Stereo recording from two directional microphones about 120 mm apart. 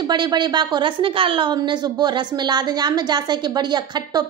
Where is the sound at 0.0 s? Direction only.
40° right (ahead or behind).